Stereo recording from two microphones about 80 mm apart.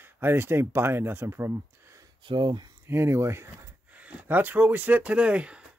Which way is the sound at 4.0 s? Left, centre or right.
Centre.